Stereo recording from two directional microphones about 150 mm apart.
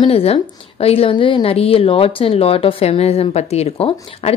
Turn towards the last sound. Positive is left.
turn(degrees=40)  # may be behind; listen again after turning